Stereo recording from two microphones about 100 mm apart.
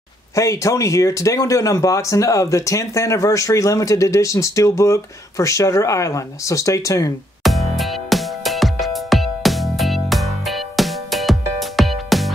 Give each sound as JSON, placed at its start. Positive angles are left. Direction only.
{"t": 0.3, "sound": "speech", "side_deg": 30}
{"t": 7.4, "sound": "music", "side_deg": 0}